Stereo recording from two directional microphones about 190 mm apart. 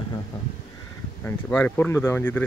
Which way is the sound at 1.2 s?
10° left (ahead or behind).